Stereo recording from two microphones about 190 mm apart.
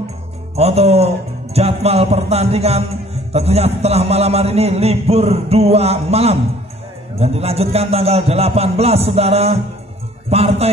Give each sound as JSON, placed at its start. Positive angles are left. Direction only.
{"t": 0.6, "sound": "a man's voice", "side_deg": -35}